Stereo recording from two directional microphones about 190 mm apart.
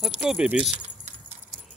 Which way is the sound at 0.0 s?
Centre (ahead or behind).